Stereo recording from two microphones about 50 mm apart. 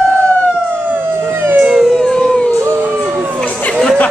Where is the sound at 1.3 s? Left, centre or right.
Right.